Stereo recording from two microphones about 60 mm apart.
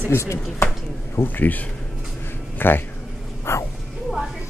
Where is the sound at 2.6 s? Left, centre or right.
Left.